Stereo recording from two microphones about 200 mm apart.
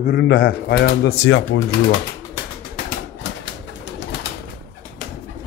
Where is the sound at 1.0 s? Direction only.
80° left.